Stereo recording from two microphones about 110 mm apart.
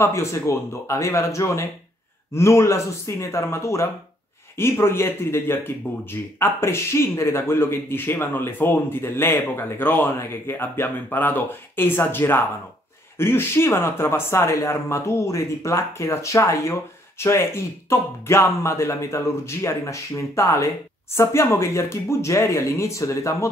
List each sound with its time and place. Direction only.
0.0 s speech: 25° left (ahead or behind)